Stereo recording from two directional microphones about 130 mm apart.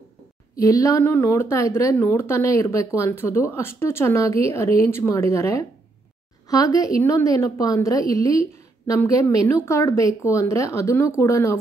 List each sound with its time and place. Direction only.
0.6 s a woman's voice: 25° left (ahead or behind)